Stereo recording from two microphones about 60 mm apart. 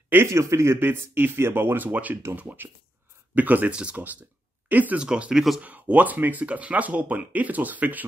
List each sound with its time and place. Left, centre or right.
0.3 s speech: right
4.9 s speech: centre
5.6 s speech: right